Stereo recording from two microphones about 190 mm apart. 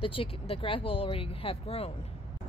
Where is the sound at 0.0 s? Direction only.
30° left (ahead or behind).